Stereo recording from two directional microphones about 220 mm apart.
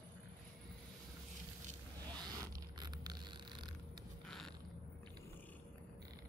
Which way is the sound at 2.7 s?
20° right (ahead or behind).